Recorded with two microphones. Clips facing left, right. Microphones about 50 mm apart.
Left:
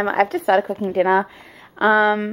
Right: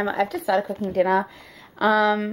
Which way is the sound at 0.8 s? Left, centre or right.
Left.